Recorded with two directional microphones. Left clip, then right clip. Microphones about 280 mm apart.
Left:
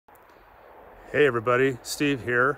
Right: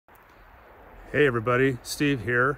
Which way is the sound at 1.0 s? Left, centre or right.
Centre.